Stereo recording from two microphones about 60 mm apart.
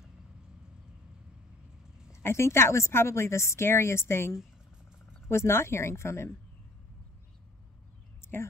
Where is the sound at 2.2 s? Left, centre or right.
Left.